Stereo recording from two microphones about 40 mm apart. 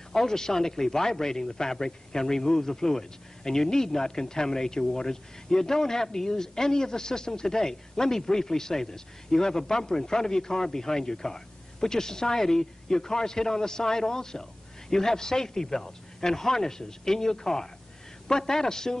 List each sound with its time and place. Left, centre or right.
0.1 s speech: centre